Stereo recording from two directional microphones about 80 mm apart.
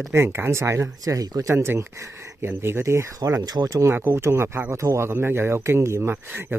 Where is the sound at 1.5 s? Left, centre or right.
Right.